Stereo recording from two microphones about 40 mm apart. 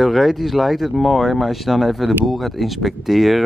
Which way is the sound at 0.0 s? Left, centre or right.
Centre.